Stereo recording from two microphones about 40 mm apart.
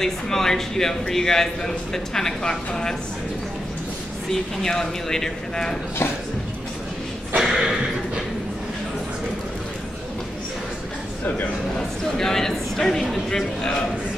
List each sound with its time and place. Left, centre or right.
0.0 s speech: centre
4.6 s speech: centre
7.3 s a sound: centre
12.0 s a man's voice: centre